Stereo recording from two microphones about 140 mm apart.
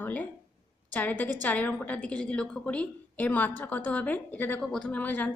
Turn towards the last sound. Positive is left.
turn(degrees=10)  # may be behind; listen again after turning